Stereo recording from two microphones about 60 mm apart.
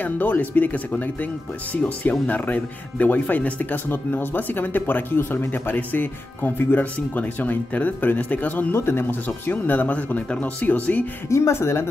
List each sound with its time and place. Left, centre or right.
0.0 s speech: left
3.9 s speech: left
8.7 s speech: left
11.2 s speech: left